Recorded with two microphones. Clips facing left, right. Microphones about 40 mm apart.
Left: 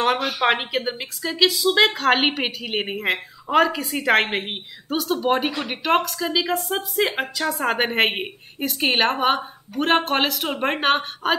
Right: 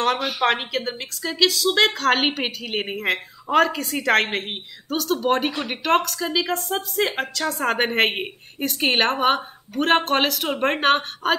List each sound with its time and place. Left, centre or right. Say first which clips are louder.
0.2 s a woman's voice: even; centre
0.5 s a woman's voice: left 1 dB; centre